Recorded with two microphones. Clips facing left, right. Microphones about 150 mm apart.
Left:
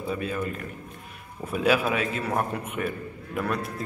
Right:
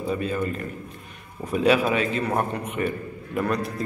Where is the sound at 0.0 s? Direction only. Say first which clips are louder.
Right 3 dB; 5° left (ahead or behind).